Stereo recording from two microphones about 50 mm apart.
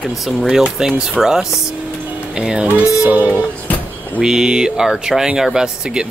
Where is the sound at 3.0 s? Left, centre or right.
Right.